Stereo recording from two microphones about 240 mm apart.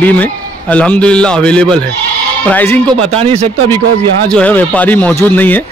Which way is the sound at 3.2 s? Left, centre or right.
Right.